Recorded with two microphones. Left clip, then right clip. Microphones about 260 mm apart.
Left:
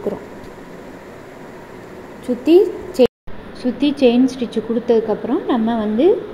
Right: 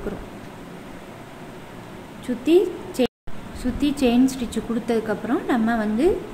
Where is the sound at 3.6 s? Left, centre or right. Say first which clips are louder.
Left 7 dB; right.